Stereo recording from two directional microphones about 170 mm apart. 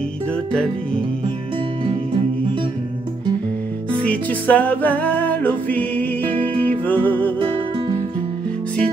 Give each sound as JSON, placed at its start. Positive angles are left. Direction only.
{"t": 4.0, "sound": "music", "side_deg": 10}
{"t": 7.3, "sound": "music", "side_deg": -30}